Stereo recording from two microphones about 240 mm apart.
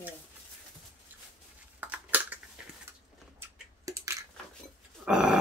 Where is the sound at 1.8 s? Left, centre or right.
Centre.